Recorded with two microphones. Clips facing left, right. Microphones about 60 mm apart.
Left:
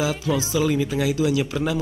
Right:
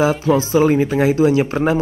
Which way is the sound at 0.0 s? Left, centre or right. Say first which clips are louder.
Right 8 dB; right.